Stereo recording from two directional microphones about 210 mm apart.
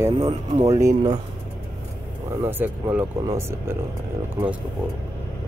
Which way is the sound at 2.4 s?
10° right (ahead or behind).